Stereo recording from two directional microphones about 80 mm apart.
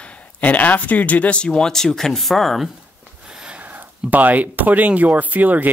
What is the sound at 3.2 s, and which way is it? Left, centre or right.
Speech, centre.